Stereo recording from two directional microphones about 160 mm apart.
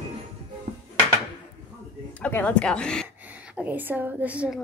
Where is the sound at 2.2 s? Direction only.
10° left (ahead or behind).